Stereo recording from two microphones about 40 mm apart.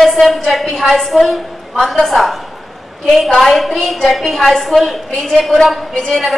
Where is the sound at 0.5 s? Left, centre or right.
Centre.